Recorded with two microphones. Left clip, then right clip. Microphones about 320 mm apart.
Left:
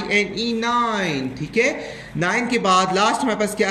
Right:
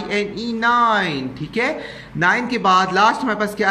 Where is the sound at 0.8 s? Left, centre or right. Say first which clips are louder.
Right 5 dB; right.